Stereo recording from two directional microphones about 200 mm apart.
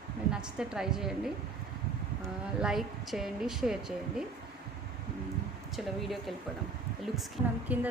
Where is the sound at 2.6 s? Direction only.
Centre (ahead or behind).